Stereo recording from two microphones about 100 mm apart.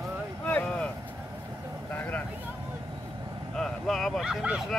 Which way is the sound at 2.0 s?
15° left (ahead or behind).